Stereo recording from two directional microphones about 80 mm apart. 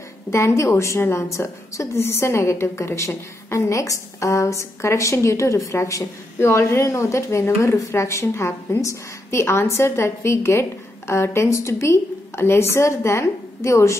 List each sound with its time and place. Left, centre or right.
0.3 s a woman's voice: left